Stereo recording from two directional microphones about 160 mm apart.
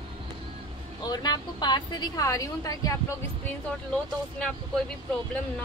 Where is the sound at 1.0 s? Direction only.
25° left (ahead or behind).